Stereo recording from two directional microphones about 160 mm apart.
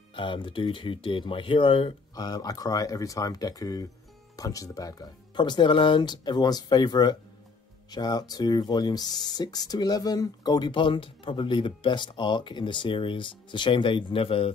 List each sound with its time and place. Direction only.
0.1 s speech: 30° left (ahead or behind)
2.1 s speech: 25° left (ahead or behind)